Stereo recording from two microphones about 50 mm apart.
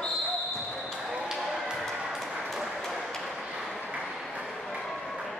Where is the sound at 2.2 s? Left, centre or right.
Centre.